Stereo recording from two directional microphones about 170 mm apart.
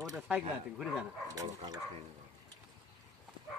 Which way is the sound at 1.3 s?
20° right (ahead or behind).